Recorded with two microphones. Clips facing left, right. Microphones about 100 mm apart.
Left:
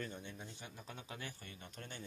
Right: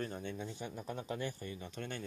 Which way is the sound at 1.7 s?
85° right.